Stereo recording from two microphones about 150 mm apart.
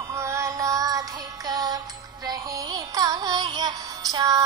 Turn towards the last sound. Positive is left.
turn(degrees=-25)  # may be behind; listen again after turning